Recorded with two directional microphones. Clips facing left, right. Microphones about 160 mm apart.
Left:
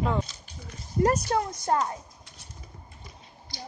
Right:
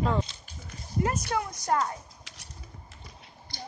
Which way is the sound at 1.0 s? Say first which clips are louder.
Left 5 dB; 35° left (ahead or behind).